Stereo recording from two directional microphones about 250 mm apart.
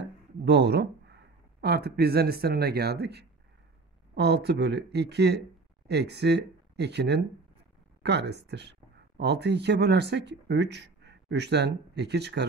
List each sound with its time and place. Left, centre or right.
0.0 s speech: right